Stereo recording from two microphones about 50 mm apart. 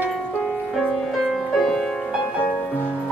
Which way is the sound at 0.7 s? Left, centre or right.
Centre.